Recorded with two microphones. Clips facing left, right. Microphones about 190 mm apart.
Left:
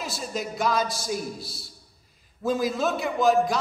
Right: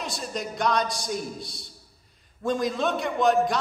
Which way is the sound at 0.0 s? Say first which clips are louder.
Left 1 dB; 5° left (ahead or behind).